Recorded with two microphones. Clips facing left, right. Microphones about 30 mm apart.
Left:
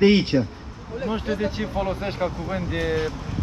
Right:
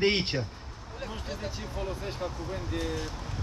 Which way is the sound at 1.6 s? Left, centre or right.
Left.